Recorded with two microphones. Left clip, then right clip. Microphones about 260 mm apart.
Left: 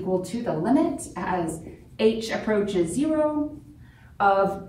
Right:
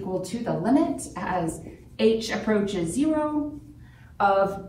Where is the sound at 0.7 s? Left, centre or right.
Centre.